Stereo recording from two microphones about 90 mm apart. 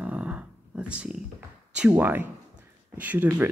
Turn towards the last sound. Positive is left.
turn(degrees=-20)  # may be behind; listen again after turning